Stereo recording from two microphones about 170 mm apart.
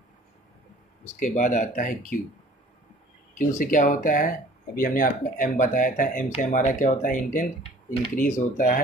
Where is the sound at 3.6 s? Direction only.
50° left (ahead or behind).